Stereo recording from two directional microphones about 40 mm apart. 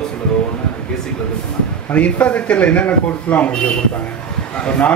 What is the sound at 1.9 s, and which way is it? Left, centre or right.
Speech, left.